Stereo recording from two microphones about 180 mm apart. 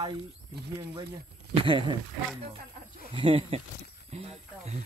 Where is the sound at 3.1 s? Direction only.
30° right (ahead or behind).